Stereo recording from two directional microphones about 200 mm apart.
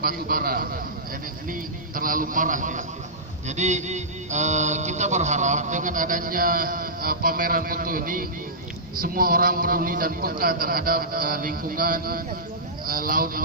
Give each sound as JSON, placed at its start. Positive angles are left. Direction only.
{"t": 0.0, "sound": "a man's voice", "side_deg": -45}
{"t": 3.4, "sound": "mantra", "side_deg": -35}
{"t": 9.0, "sound": "a man's voice", "side_deg": -45}